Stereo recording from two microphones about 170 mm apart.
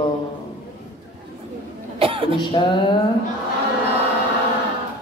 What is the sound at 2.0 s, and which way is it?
Cough, 30° right (ahead or behind).